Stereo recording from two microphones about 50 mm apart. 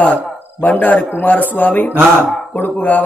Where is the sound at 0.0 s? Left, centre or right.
Left.